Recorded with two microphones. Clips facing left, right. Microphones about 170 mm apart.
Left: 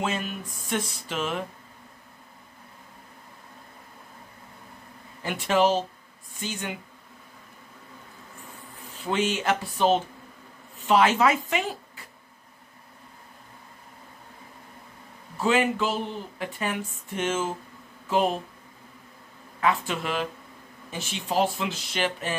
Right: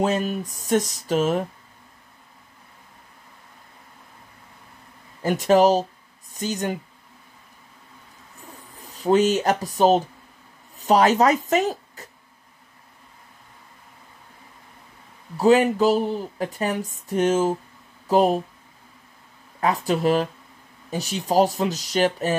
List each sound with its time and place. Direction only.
0.0 s speech: 40° right (ahead or behind)
5.2 s speech: 40° right (ahead or behind)
8.7 s speech: 40° right (ahead or behind)
15.3 s speech: 40° right (ahead or behind)
19.6 s speech: 40° right (ahead or behind)